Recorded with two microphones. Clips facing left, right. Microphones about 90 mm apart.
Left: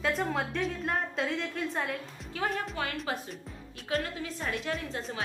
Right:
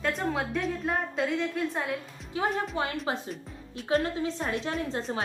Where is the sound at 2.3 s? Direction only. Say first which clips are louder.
Right 4 dB; 20° right (ahead or behind).